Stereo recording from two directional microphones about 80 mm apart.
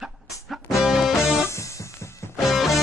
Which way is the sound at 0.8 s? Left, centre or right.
Centre.